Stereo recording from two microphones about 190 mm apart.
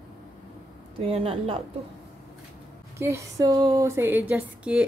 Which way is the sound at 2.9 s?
15° right (ahead or behind).